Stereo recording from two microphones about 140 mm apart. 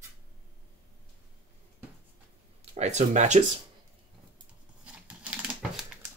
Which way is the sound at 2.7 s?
55° right (ahead or behind).